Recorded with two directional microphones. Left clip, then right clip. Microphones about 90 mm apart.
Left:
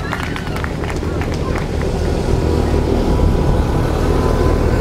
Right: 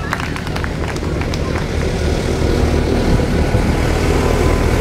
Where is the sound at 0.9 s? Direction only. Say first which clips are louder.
Even; 30° right (ahead or behind).